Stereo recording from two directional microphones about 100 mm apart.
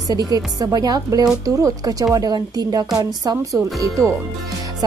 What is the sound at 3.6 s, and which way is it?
Speech, 30° right (ahead or behind).